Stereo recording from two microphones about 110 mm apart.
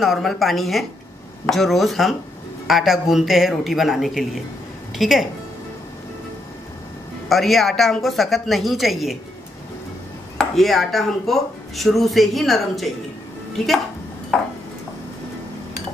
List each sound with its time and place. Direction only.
0.0 s a woman's voice: centre (ahead or behind)
7.2 s speech: centre (ahead or behind)
10.3 s speech: centre (ahead or behind)
14.3 s speech: 5° left (ahead or behind)